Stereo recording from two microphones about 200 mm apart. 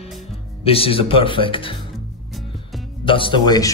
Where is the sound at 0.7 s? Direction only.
30° left (ahead or behind).